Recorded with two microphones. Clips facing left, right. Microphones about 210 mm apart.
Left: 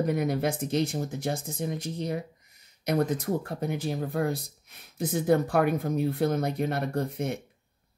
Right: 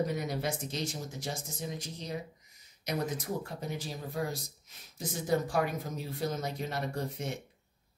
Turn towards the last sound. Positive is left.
turn(degrees=55)  # may be behind; listen again after turning